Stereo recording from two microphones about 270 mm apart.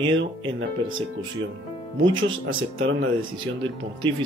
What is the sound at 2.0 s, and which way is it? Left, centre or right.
Speech, right.